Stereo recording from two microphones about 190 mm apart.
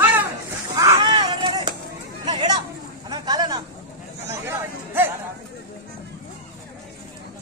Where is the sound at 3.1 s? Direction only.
20° right (ahead or behind).